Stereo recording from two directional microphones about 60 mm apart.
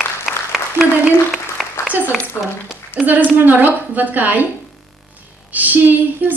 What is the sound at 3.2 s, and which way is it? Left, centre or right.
A woman's voice, right.